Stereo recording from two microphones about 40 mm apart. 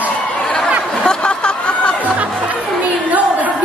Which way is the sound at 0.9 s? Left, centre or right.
Left.